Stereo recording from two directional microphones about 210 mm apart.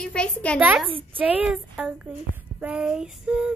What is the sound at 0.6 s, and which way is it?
A woman's voice, 5° right (ahead or behind).